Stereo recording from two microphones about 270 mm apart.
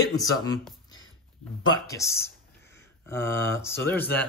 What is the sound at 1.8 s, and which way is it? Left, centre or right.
Speech, centre.